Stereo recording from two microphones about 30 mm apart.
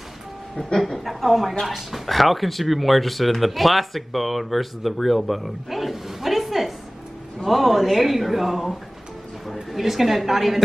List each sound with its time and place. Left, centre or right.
0.9 s a woman's voice: centre